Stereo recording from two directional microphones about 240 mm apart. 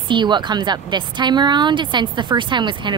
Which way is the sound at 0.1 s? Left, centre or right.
Centre.